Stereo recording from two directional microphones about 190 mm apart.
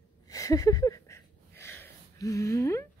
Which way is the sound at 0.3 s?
15° left (ahead or behind).